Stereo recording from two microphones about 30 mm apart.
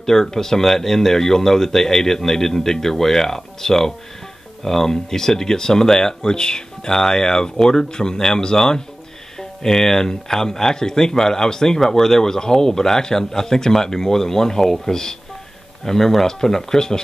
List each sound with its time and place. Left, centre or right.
0.0 s speech: centre